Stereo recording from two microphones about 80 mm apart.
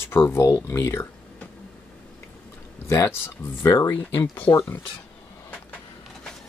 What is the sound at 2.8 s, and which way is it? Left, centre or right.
Speech, left.